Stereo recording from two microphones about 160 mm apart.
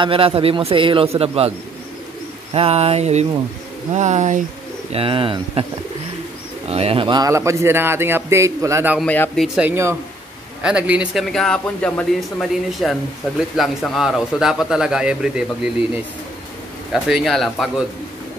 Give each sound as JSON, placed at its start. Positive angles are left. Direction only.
{"t": 0.0, "sound": "a man's voice", "side_deg": -35}
{"t": 2.5, "sound": "a man's voice", "side_deg": -40}
{"t": 4.9, "sound": "a man's voice", "side_deg": -35}
{"t": 6.7, "sound": "a man's voice", "side_deg": -40}
{"t": 7.2, "sound": "a man's voice", "side_deg": -20}
{"t": 9.0, "sound": "speech", "side_deg": 10}
{"t": 9.4, "sound": "a man's voice", "side_deg": -5}
{"t": 11.3, "sound": "speech", "side_deg": 5}